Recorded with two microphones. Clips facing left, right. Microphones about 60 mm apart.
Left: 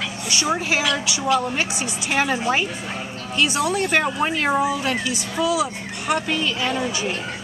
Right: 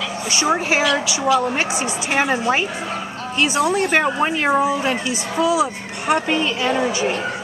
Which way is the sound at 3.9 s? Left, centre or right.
Centre.